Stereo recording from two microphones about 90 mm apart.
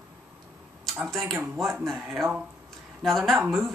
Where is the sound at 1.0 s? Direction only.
5° left (ahead or behind).